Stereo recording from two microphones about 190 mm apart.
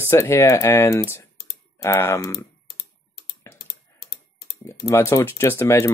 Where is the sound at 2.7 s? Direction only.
55° left (ahead or behind).